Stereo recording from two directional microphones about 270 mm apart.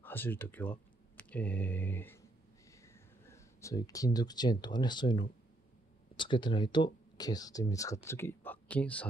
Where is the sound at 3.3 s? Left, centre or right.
Centre.